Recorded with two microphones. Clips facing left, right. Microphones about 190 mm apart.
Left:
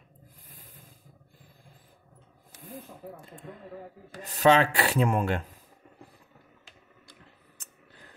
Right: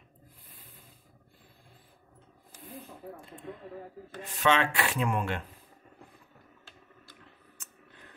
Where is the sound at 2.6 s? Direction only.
45° left (ahead or behind).